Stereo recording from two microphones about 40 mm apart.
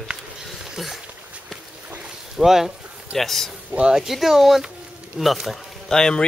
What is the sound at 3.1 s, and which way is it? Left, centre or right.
Speech, centre.